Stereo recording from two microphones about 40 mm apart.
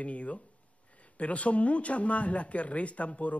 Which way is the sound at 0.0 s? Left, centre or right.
Left.